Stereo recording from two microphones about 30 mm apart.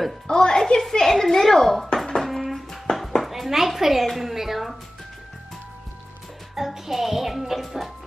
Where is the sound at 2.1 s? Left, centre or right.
Centre.